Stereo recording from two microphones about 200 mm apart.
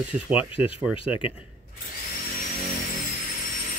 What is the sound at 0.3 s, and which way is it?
Speech, 5° right (ahead or behind).